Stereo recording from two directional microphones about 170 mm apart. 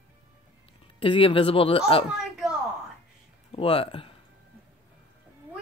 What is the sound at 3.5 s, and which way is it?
Speech, 35° left (ahead or behind).